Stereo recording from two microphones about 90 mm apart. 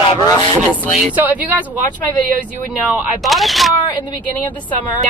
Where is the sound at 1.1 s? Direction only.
20° right (ahead or behind).